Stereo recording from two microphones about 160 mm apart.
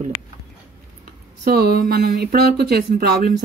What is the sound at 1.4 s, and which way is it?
Speech, 80° right.